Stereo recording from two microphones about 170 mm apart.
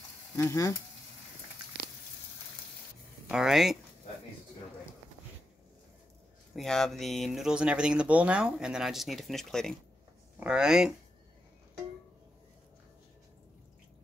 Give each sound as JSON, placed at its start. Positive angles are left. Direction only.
{"t": 0.4, "sound": "frying", "side_deg": 20}
{"t": 3.3, "sound": "speech", "side_deg": -5}
{"t": 6.5, "sound": "speech", "side_deg": 0}